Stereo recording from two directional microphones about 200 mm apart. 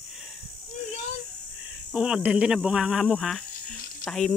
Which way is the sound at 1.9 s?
5° right (ahead or behind).